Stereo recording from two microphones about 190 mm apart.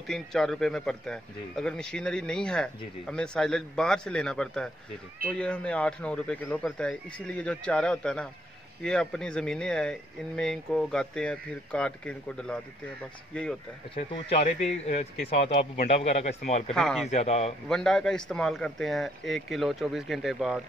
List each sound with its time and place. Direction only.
0.0 s speech: centre (ahead or behind)
13.9 s speech: 30° left (ahead or behind)
16.7 s speech: centre (ahead or behind)
17.1 s speech: 35° left (ahead or behind)
17.6 s speech: 5° left (ahead or behind)